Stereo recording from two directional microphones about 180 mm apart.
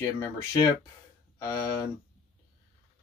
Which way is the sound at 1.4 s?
15° left (ahead or behind).